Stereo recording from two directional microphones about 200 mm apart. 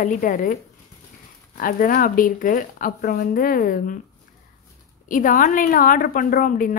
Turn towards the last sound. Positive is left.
turn(degrees=45)  # may be behind; listen again after turning